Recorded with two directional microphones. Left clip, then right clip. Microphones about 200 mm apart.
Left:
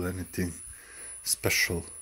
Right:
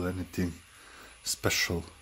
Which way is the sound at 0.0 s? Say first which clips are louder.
Even; centre (ahead or behind).